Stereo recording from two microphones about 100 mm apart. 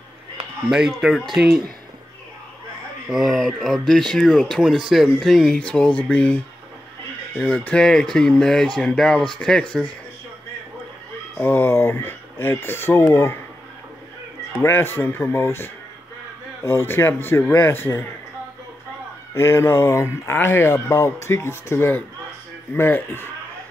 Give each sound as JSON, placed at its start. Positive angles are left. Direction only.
{"t": 0.7, "sound": "speech", "side_deg": -5}
{"t": 3.1, "sound": "speech", "side_deg": 0}
{"t": 11.3, "sound": "speech", "side_deg": 20}
{"t": 14.6, "sound": "speech", "side_deg": 25}
{"t": 19.3, "sound": "speech", "side_deg": 25}